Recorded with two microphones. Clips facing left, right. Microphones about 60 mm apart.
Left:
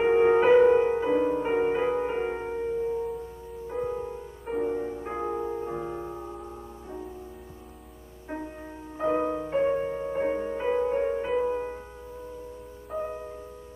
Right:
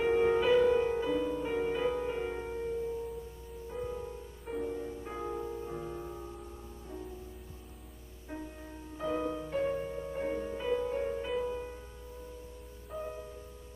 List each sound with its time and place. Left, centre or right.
0.0 s music: left
8.9 s music: left
12.9 s music: left